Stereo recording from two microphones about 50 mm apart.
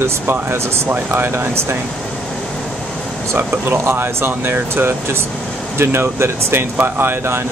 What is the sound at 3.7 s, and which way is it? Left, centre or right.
Speech, right.